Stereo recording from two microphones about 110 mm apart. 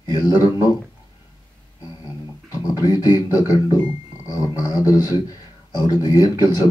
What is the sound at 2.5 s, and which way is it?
Speech, 35° left (ahead or behind).